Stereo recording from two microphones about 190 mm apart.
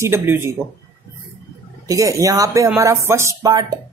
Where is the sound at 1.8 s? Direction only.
15° right (ahead or behind).